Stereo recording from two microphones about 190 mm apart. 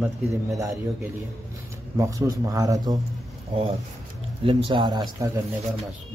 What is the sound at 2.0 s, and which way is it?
Speech, 15° right (ahead or behind).